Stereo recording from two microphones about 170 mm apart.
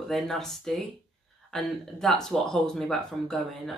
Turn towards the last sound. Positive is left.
turn(degrees=0)  # may be behind; listen again after turning